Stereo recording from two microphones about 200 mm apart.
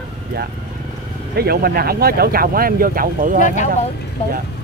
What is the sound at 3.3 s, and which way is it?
Speech, 40° left (ahead or behind).